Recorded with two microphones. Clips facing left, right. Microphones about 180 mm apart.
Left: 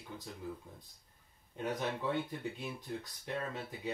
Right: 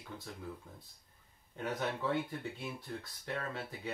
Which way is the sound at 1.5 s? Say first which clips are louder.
Even; 20° left (ahead or behind).